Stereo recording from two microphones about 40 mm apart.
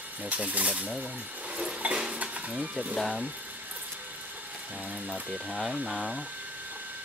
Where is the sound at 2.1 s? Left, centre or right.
Right.